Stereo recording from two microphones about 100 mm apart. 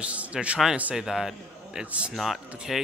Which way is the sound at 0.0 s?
10° right (ahead or behind).